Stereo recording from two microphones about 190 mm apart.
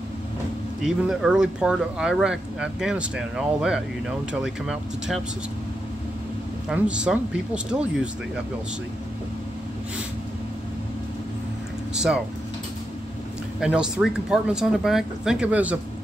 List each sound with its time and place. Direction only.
0.8 s speech: centre (ahead or behind)
6.7 s speech: 5° right (ahead or behind)
11.9 s speech: 5° right (ahead or behind)
13.6 s speech: 5° right (ahead or behind)